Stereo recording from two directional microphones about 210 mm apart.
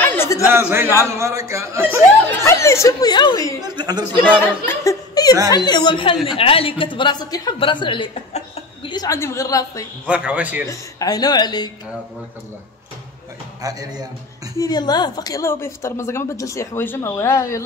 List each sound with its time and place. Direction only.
0.0 s a sound: 10° left (ahead or behind)
0.5 s speech: 10° right (ahead or behind)
2.4 s speech: 15° left (ahead or behind)
3.6 s a man's voice: 20° right (ahead or behind)
4.2 s speech: 10° left (ahead or behind); by 8.9 s 30° left (ahead or behind)
8.9 s speech: 15° left (ahead or behind)
10.0 s speech: 5° right (ahead or behind)
10.7 s speech: 15° left (ahead or behind)
13.6 s speech: 15° right (ahead or behind)
14.6 s speech: 20° left (ahead or behind)